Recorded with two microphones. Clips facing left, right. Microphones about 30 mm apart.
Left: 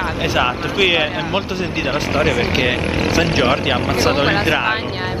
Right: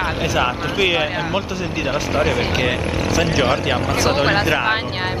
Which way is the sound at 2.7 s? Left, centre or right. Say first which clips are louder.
Left 2 dB; left.